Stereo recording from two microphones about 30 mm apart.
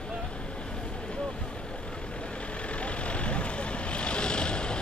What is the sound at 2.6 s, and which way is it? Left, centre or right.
Vehicle, left.